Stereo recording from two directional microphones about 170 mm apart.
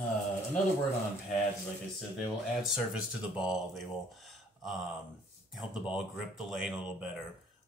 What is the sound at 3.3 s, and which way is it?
Speech, centre (ahead or behind).